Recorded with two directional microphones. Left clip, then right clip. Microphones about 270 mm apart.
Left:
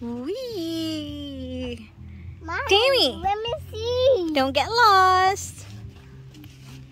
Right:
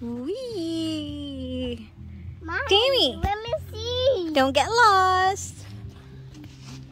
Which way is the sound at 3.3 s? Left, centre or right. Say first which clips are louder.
Left 2 dB; left.